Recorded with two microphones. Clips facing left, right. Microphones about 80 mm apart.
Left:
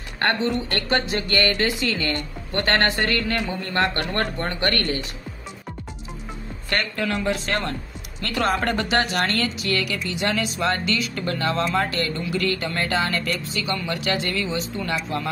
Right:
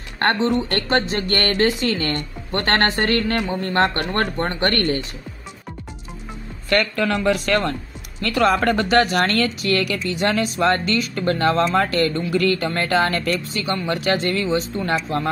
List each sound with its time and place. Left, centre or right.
0.2 s a woman's voice: right
7.0 s speech: right
8.4 s speech: right